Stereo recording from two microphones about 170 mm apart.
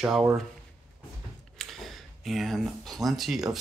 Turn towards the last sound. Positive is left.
turn(degrees=0)  # may be behind; listen again after turning